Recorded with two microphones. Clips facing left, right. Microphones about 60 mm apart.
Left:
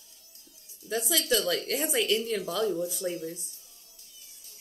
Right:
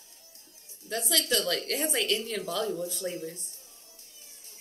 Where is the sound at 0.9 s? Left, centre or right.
Centre.